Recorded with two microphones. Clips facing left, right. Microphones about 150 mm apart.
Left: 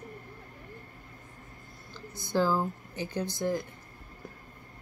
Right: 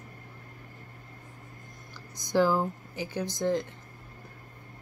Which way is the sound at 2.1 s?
15° right (ahead or behind).